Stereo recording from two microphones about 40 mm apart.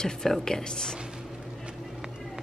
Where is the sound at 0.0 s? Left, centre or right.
Centre.